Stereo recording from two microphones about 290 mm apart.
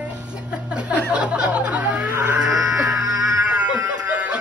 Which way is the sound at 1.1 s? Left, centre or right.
Centre.